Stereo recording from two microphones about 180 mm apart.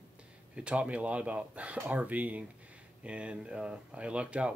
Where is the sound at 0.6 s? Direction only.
5° right (ahead or behind).